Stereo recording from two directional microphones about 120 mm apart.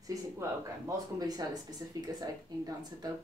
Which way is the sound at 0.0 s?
25° right (ahead or behind).